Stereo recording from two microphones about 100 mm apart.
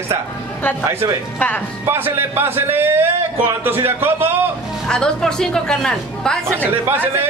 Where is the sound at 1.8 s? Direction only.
25° right (ahead or behind).